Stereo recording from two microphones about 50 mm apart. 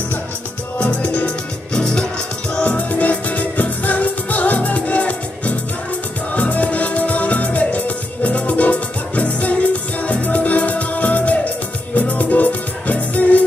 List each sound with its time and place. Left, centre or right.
0.7 s music: left
1.7 s music: centre